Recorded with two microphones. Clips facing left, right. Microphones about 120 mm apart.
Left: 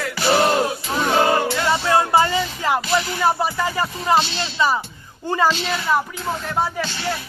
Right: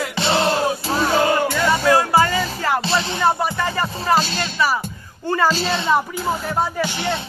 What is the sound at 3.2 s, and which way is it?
Music, 15° left (ahead or behind).